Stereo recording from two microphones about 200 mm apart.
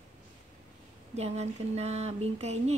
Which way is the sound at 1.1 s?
30° right (ahead or behind).